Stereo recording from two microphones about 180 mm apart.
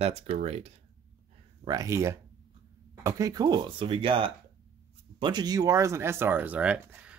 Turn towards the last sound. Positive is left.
turn(degrees=-5)  # may be behind; listen again after turning